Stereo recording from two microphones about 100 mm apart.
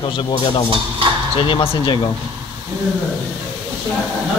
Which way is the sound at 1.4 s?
60° left (ahead or behind).